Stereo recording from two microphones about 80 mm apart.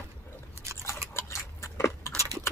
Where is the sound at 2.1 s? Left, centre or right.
Right.